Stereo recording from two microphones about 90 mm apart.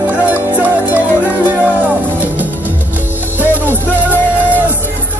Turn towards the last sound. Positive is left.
turn(degrees=20)  # may be behind; listen again after turning